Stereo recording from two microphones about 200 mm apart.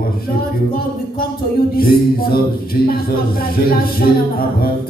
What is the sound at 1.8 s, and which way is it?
Music, 50° left (ahead or behind).